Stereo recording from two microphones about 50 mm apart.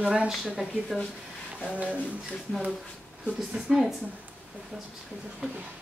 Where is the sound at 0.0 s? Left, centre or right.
Right.